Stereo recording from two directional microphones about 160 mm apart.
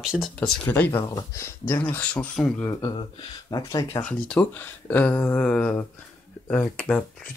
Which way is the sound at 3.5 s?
25° left (ahead or behind).